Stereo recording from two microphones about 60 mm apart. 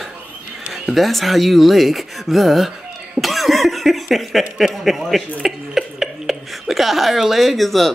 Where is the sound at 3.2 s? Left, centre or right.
Centre.